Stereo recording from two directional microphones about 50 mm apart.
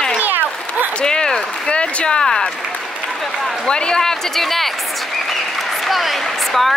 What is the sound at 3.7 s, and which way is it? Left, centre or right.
A man's voice, centre.